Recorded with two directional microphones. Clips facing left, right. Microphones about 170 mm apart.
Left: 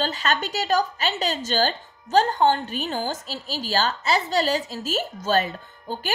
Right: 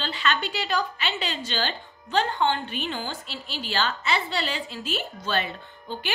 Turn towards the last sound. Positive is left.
turn(degrees=40)  # may be behind; listen again after turning